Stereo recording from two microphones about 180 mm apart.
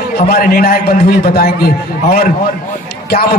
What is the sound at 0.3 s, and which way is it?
A man's voice, 55° left (ahead or behind).